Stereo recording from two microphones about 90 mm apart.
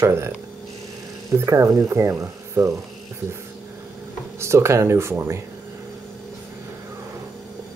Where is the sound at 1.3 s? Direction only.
35° right (ahead or behind).